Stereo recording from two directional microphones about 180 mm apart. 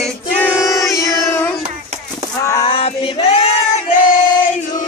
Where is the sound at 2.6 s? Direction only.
30° left (ahead or behind).